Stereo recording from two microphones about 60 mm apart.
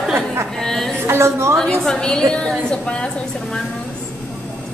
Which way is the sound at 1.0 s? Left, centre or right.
Right.